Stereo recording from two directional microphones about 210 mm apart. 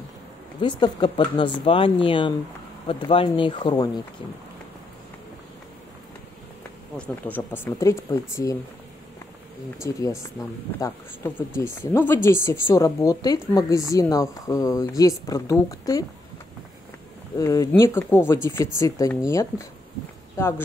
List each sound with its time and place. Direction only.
0.6 s speech: 20° left (ahead or behind)
7.0 s speech: 5° left (ahead or behind)
9.8 s speech: 15° left (ahead or behind)
17.4 s speech: 15° left (ahead or behind)